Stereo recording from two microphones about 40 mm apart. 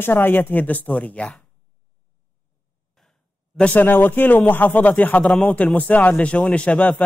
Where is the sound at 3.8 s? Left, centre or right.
Left.